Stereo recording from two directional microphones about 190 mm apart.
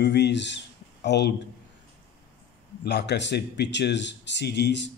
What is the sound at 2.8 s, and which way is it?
Speech, 65° left (ahead or behind).